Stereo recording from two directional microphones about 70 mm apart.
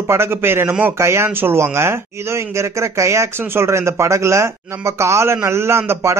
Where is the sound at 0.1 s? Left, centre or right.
Right.